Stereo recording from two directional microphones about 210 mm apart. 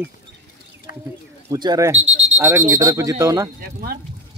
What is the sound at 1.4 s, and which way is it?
Speech, 20° right (ahead or behind).